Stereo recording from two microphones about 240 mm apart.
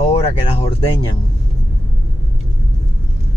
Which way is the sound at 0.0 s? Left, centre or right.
Left.